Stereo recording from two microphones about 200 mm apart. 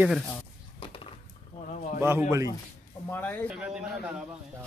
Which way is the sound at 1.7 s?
35° left (ahead or behind).